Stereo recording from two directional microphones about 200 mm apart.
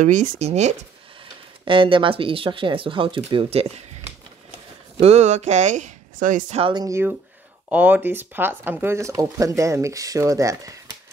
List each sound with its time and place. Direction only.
0.0 s speech: 35° right (ahead or behind)
5.0 s speech: 35° right (ahead or behind)
6.6 s speech: 20° right (ahead or behind)